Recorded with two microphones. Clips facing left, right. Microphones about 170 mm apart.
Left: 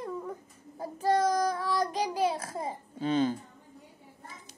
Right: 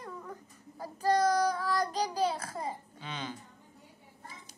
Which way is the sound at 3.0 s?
45° left (ahead or behind).